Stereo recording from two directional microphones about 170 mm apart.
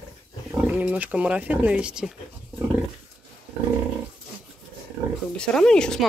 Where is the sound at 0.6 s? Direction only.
10° right (ahead or behind).